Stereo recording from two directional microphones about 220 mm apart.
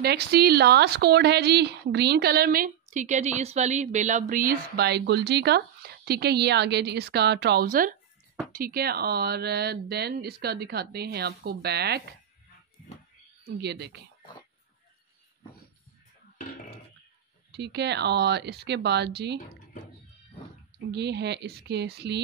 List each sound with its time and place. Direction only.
0.0 s speech: 45° right (ahead or behind)
13.5 s speech: 50° right (ahead or behind)
17.5 s speech: 50° right (ahead or behind)
20.9 s speech: 50° right (ahead or behind)